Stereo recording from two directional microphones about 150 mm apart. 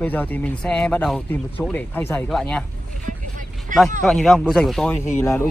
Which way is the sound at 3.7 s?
60° right (ahead or behind).